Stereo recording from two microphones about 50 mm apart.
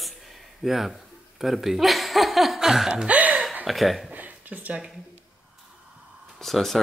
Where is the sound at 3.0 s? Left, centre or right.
Right.